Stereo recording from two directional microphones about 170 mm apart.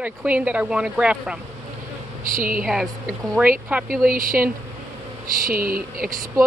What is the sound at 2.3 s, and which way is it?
Speech, 55° right (ahead or behind).